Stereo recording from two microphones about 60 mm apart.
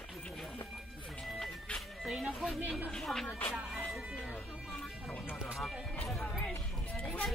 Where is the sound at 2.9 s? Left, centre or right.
Centre.